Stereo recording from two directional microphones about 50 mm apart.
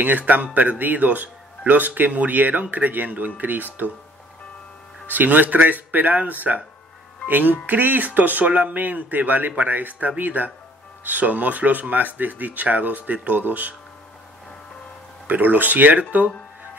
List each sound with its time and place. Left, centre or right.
0.0 s speech: right
5.0 s speech: right
15.2 s speech: right